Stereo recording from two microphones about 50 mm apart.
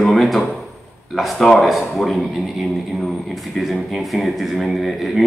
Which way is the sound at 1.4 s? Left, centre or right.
Centre.